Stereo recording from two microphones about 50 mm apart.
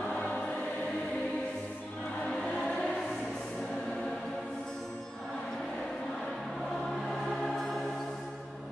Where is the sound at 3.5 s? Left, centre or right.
Centre.